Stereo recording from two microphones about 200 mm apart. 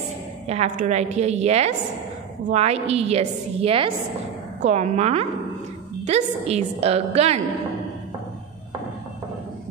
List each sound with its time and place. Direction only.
0.5 s a woman's voice: 35° right (ahead or behind)